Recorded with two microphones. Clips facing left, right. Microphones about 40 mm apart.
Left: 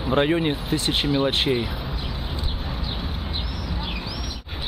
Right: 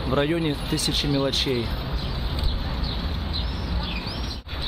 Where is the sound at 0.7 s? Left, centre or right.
Left.